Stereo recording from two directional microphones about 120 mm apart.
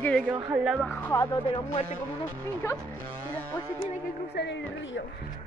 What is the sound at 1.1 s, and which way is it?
Speech, 35° left (ahead or behind).